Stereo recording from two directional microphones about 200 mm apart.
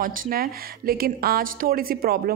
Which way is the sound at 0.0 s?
45° right (ahead or behind).